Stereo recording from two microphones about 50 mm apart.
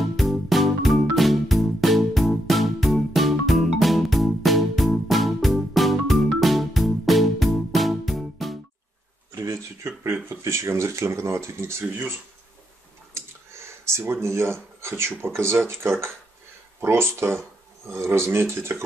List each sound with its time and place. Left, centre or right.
0.0 s music: centre
9.3 s a sound: right
10.4 s speech: right
13.1 s speech: right